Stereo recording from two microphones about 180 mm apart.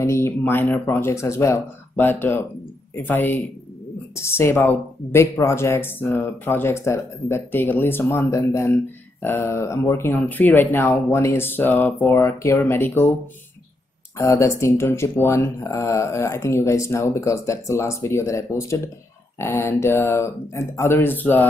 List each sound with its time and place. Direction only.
0.0 s speech: 15° left (ahead or behind)
14.1 s speech: 15° left (ahead or behind)